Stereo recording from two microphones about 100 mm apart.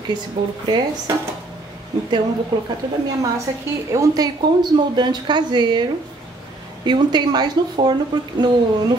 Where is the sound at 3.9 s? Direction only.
35° right (ahead or behind).